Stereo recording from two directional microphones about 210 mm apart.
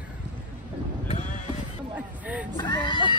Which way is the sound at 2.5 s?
20° left (ahead or behind).